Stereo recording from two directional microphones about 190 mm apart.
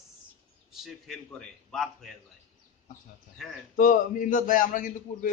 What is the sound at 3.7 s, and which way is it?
A man's voice, 45° left (ahead or behind).